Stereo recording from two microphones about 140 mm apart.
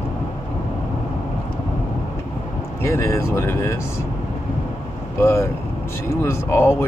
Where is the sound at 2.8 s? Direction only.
20° left (ahead or behind).